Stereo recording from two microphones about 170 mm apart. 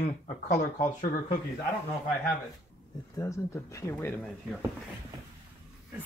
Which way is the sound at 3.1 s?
20° left (ahead or behind).